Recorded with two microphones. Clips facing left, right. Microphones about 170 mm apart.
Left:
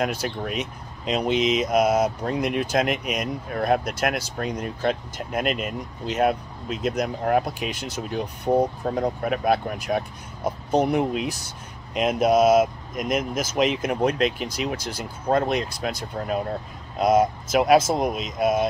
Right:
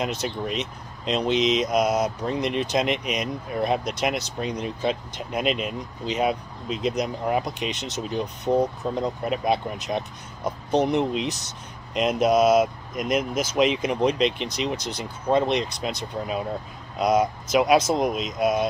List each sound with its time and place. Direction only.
0.0 s speech: 5° left (ahead or behind)
1.7 s speech: 55° left (ahead or behind)
2.0 s speech: 5° left (ahead or behind)
6.9 s speech: 55° left (ahead or behind)
7.4 s speech: 5° left (ahead or behind)
12.2 s speech: 50° left (ahead or behind)
12.9 s speech: centre (ahead or behind)
13.3 s speech: 50° left (ahead or behind)
13.6 s speech: 5° left (ahead or behind)
17.1 s speech: 50° left (ahead or behind)
17.9 s speech: centre (ahead or behind)